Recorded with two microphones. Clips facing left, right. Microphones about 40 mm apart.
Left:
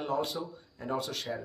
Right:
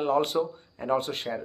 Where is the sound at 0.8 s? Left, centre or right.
Right.